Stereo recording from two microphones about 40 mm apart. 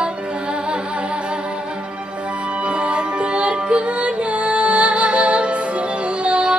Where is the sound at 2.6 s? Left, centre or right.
Right.